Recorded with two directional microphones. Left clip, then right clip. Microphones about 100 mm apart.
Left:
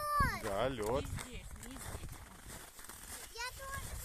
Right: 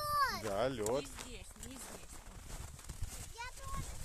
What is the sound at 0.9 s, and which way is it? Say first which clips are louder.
Run: even; 20° right (ahead or behind).